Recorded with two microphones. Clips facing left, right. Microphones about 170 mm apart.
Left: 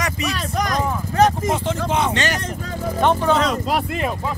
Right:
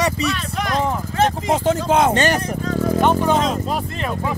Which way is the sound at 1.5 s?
45° right (ahead or behind).